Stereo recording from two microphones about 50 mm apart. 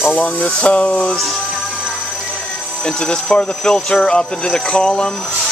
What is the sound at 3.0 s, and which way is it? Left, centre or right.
Speech, centre.